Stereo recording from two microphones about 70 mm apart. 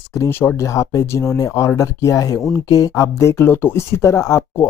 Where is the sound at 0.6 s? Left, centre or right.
Left.